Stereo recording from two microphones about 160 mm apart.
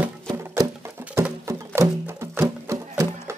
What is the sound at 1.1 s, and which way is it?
Music, 15° right (ahead or behind).